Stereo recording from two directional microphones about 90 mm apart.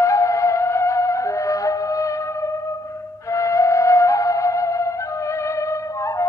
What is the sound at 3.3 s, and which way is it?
Music, 35° left (ahead or behind).